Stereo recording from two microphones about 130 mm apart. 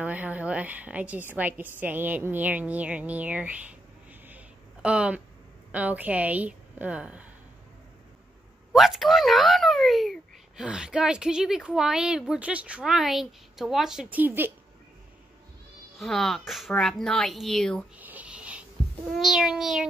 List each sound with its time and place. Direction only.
0.0 s a woman's voice: 10° right (ahead or behind)
8.7 s speech: centre (ahead or behind)
14.1 s a woman's voice: 15° right (ahead or behind)
16.0 s speech: 5° left (ahead or behind)
17.9 s a sound: 10° right (ahead or behind)
19.1 s speech: 5° right (ahead or behind)